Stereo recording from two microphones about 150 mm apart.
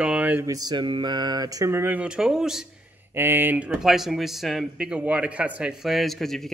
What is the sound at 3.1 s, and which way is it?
Speech, 15° right (ahead or behind).